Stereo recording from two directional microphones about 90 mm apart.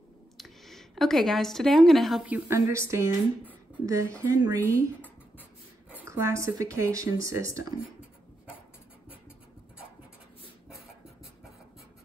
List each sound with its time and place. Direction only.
0.4 s a sound: centre (ahead or behind)
1.9 s speech: centre (ahead or behind)
2.2 s speech: 20° right (ahead or behind)
4.6 s speech: 20° left (ahead or behind)
6.0 s speech: 35° right (ahead or behind)